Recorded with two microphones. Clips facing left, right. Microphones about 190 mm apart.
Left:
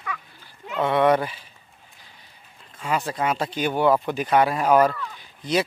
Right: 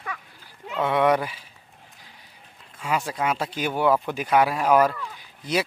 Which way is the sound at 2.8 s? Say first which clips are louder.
Left 1 dB; 10° right (ahead or behind).